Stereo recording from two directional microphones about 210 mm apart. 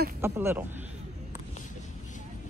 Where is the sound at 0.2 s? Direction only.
10° right (ahead or behind).